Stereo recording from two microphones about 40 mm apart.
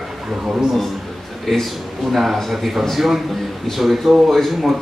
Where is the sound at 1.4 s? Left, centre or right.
Centre.